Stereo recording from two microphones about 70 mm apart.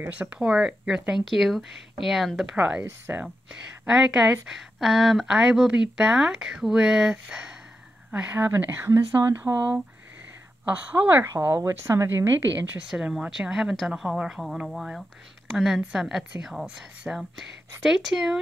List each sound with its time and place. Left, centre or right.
0.3 s speech: centre
2.5 s speech: centre
3.8 s speech: centre
8.1 s a woman's voice: right
9.4 s speech: right
11.2 s a woman's voice: right
12.9 s speech: centre
13.3 s speech: centre